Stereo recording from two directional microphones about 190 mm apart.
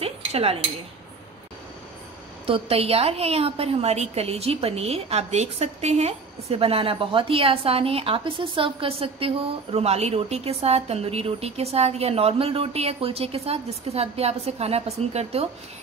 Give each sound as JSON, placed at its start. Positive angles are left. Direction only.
{"t": 0.0, "sound": "cutlery", "side_deg": -30}
{"t": 2.4, "sound": "a woman's voice", "side_deg": -30}